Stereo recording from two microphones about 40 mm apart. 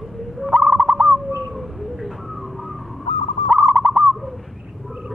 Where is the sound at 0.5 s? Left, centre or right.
Right.